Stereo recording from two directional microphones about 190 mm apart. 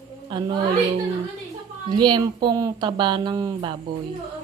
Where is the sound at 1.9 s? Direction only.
25° right (ahead or behind).